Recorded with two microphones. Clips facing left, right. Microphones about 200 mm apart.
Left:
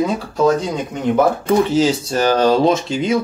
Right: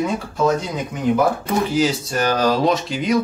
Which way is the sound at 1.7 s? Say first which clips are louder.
Left 3 dB; 30° left (ahead or behind).